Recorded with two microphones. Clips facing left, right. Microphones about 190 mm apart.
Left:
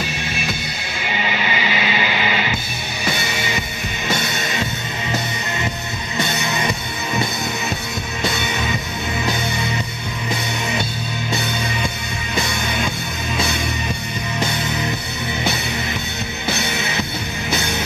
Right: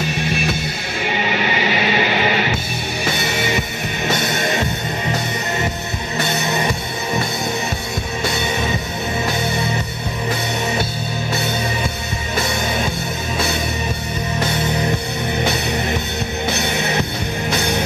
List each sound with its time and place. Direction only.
1.0 s music: 60° right (ahead or behind)